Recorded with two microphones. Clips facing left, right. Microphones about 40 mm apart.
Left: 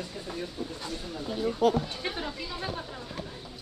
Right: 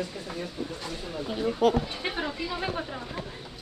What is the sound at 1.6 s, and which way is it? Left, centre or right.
Speech, right.